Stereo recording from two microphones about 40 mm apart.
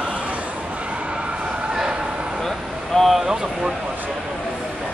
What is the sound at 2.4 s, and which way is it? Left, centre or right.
Vehicle, centre.